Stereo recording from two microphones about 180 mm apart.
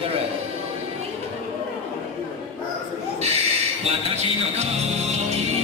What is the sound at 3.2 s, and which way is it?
Music, 35° right (ahead or behind).